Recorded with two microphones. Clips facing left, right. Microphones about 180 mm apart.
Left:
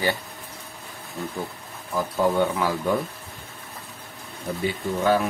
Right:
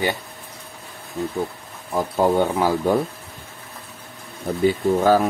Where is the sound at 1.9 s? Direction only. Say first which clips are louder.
Right 4 dB; 30° right (ahead or behind).